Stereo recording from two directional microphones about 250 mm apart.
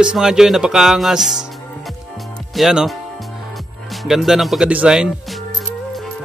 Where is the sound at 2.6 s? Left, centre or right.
Centre.